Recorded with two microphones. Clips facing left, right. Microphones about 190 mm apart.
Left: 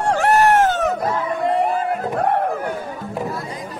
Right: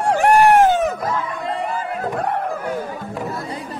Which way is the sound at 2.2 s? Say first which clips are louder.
Left 4 dB; 55° left (ahead or behind).